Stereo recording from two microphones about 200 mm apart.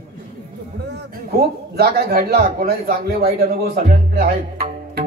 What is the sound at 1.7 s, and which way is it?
A man's voice, 55° right (ahead or behind).